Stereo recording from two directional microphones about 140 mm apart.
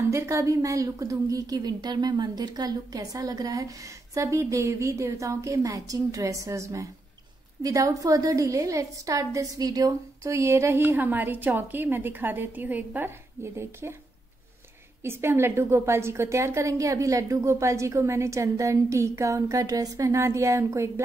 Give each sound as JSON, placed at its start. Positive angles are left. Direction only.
{"t": 0.1, "sound": "a woman's voice", "side_deg": -20}
{"t": 15.0, "sound": "a woman's voice", "side_deg": -15}